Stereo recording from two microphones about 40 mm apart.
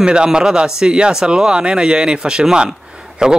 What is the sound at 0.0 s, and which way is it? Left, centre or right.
Speech, right.